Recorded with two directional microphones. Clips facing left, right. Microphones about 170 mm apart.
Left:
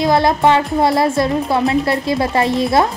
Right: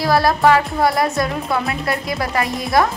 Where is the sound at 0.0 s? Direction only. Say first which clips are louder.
Left 2 dB; 20° left (ahead or behind).